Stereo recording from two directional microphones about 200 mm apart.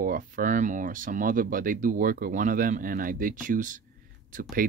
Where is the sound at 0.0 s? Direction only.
40° right (ahead or behind).